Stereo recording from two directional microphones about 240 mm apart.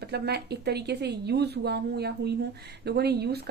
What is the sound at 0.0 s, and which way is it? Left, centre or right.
A woman's voice, right.